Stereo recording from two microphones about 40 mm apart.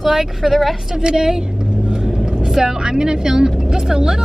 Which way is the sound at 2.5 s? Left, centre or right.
Centre.